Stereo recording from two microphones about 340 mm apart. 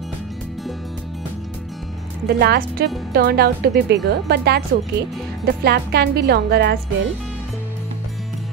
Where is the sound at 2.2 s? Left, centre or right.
Right.